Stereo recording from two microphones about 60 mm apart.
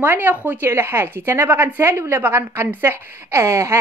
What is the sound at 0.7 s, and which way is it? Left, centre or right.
A woman's voice, right.